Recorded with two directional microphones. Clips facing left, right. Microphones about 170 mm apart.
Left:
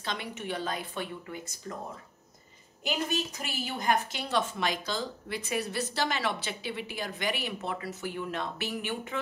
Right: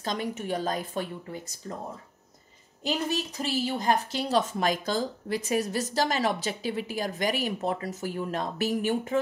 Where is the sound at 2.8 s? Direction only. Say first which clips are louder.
Right 2 dB; 35° right (ahead or behind).